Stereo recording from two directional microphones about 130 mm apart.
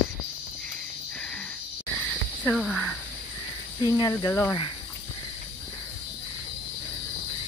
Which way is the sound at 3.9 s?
30° left (ahead or behind).